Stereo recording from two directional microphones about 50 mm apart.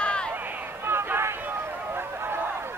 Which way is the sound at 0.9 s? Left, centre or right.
Right.